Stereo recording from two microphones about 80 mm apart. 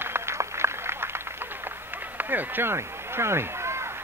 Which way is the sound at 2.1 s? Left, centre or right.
Right.